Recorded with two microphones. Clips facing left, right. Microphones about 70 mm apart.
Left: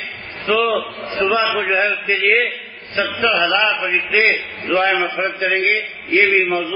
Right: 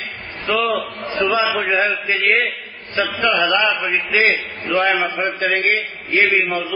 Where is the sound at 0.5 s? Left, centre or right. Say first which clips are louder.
Left 2 dB; centre.